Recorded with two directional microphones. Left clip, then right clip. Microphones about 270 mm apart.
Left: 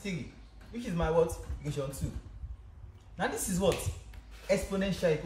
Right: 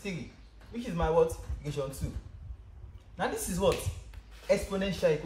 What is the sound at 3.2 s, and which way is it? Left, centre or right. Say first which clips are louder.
A man's voice: right 1 dB; centre.